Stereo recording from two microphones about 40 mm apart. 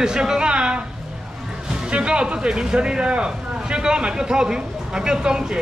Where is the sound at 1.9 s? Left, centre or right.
Right.